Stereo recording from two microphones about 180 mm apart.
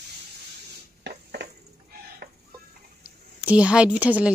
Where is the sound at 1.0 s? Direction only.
70° right (ahead or behind).